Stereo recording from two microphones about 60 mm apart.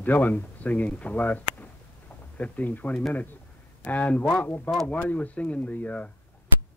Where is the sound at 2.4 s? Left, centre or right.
Left.